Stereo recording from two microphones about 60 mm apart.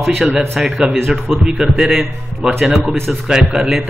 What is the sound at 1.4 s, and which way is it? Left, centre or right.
A man's voice, centre.